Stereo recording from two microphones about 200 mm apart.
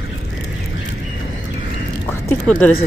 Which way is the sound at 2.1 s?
10° left (ahead or behind).